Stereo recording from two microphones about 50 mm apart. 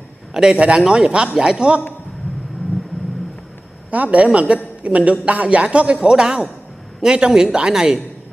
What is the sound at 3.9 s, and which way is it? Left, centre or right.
A man's voice, right.